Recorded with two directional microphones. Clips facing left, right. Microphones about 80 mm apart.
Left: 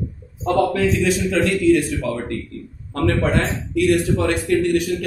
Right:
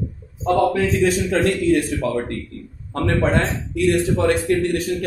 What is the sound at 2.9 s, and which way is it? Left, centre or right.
A man's voice, right.